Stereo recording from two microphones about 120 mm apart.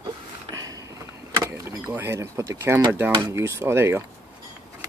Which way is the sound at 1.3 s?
30° right (ahead or behind).